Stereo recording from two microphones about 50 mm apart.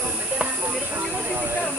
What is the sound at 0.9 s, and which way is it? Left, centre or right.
Hiss, right.